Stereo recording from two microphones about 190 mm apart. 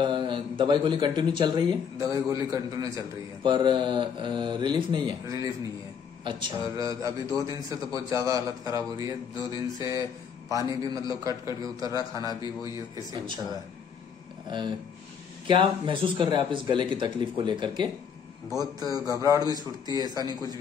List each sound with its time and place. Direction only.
0.0 s a man's voice: 25° right (ahead or behind)
14.5 s speech: 25° right (ahead or behind)